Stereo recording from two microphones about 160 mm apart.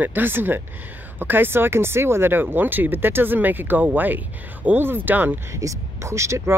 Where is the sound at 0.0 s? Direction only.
10° right (ahead or behind).